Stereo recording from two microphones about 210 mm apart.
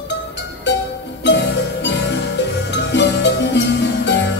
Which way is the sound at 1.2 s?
55° left (ahead or behind).